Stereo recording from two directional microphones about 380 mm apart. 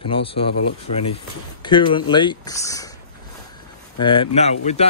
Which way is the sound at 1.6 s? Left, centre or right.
Centre.